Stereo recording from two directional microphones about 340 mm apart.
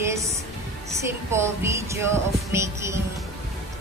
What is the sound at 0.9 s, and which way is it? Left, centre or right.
Music, centre.